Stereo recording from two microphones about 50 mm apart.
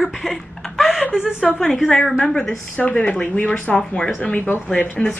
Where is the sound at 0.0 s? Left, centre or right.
Centre.